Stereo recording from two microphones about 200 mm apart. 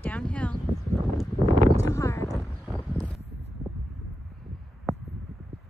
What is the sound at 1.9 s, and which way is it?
Clip-clop, 15° left (ahead or behind).